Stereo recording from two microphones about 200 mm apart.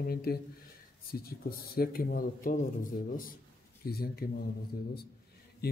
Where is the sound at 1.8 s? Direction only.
50° left (ahead or behind).